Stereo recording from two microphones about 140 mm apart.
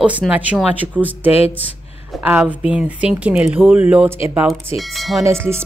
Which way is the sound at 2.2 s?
15° right (ahead or behind).